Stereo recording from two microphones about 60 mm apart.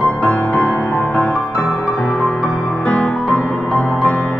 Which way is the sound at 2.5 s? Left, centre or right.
Left.